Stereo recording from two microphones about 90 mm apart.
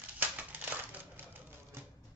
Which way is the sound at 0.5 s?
20° right (ahead or behind).